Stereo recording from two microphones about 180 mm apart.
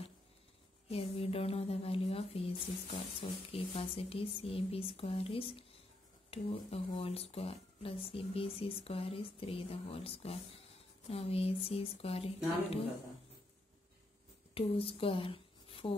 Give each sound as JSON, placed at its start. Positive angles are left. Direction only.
{"t": 0.8, "sound": "speech", "side_deg": 35}
{"t": 14.5, "sound": "speech", "side_deg": 30}